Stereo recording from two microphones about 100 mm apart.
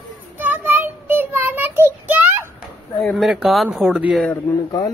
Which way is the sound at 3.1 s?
5° right (ahead or behind).